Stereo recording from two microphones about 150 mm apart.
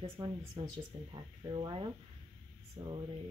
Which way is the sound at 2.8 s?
25° right (ahead or behind).